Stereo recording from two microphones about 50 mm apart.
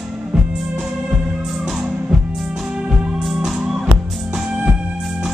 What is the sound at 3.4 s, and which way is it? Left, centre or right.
Music, centre.